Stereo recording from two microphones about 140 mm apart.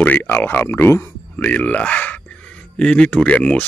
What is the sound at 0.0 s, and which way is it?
Speech, 10° left (ahead or behind).